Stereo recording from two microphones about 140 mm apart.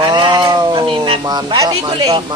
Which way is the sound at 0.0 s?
35° right (ahead or behind).